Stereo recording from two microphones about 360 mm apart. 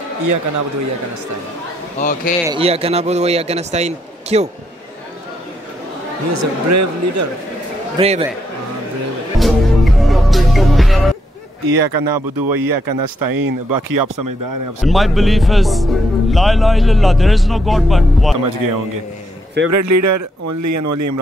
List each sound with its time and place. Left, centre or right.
2.0 s a man's voice: left
2.4 s speech: centre
6.3 s speech: right
8.0 s speech: centre
9.4 s music: centre
11.6 s speech: right
14.8 s a man's voice: centre
18.4 s a man's voice: right
19.7 s speech: right